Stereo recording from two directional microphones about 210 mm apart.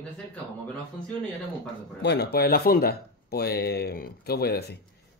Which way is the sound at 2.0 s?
55° left (ahead or behind).